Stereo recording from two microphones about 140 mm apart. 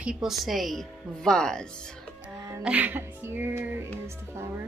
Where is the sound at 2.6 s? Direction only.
10° right (ahead or behind).